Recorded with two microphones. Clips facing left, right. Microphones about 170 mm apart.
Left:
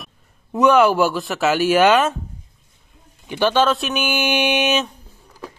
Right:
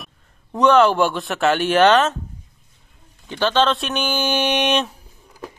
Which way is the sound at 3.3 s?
10° left (ahead or behind).